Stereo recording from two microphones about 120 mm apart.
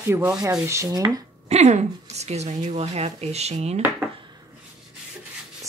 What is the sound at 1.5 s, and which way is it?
A woman's voice, 70° right (ahead or behind).